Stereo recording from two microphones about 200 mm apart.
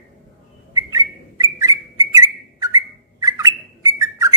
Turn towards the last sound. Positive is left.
turn(degrees=-15)  # may be behind; listen again after turning